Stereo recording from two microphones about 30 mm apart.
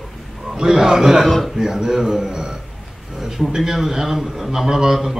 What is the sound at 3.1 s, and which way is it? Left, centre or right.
A man's voice, centre.